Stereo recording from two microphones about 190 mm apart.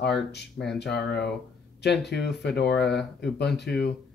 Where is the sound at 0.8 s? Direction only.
60° left (ahead or behind).